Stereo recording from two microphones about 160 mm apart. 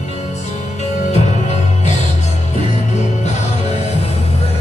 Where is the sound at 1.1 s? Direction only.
45° left (ahead or behind).